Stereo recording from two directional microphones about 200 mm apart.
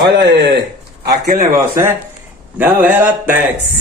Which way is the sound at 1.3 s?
45° right (ahead or behind).